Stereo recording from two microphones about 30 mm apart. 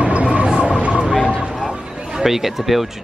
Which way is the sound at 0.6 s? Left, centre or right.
Right.